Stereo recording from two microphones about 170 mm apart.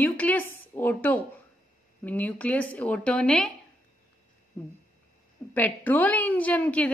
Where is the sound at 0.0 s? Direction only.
10° left (ahead or behind).